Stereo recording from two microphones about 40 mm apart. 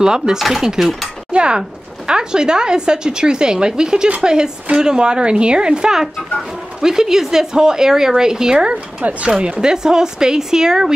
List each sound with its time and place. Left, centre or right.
0.0 s a woman's voice: centre
0.4 s speech: centre
1.3 s a woman's voice: right
9.0 s speech: right
9.4 s a woman's voice: right